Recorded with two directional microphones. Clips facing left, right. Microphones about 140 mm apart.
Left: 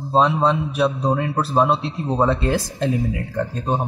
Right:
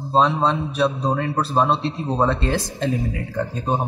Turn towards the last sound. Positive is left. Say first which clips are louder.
# even
turn(degrees=0)  # may be behind; listen again after turning